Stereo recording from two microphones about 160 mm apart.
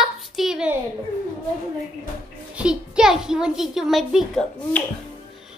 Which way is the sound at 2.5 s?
5° right (ahead or behind).